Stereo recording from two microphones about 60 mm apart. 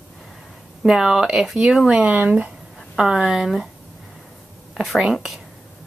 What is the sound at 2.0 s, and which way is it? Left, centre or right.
Speech, right.